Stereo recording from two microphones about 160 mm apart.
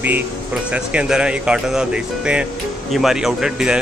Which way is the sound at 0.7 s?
5° right (ahead or behind).